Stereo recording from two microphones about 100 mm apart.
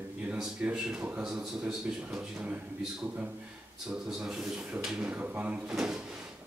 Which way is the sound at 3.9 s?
10° right (ahead or behind).